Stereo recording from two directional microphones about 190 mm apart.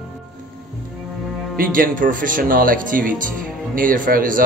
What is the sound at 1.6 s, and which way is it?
Speech, 50° right (ahead or behind).